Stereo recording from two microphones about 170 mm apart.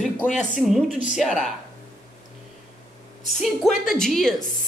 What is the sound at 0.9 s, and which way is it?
Speech, 50° left (ahead or behind).